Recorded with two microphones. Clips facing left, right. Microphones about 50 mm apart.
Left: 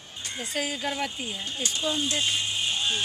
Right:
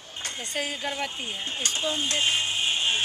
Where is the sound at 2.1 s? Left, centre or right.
Right.